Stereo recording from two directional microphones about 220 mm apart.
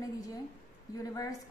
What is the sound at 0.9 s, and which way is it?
Speech, 15° left (ahead or behind).